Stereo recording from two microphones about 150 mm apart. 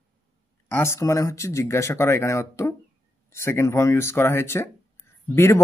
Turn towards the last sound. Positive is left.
turn(degrees=15)  # may be behind; listen again after turning